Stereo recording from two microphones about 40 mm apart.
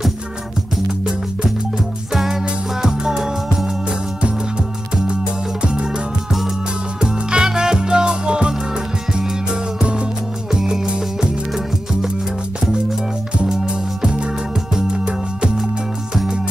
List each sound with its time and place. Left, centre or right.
2.1 s music: centre
5.0 s music: right
7.0 s music: right
10.5 s music: centre
14.8 s music: right